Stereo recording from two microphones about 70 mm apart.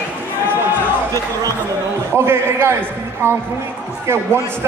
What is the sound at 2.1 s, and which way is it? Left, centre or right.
A man's voice, right.